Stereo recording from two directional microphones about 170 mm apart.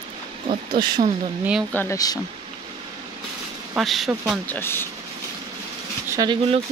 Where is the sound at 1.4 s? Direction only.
5° right (ahead or behind).